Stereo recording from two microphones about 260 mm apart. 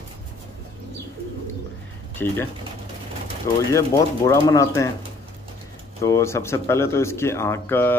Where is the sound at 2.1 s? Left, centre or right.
Centre.